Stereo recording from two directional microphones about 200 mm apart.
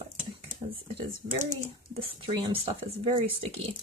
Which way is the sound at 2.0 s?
25° right (ahead or behind).